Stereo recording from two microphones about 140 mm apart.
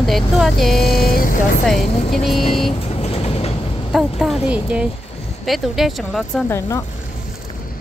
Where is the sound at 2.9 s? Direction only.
50° left (ahead or behind).